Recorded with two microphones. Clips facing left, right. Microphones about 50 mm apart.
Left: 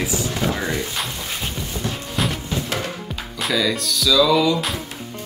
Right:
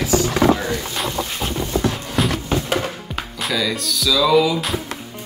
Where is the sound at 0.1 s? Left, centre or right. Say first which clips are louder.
Right 7 dB; right.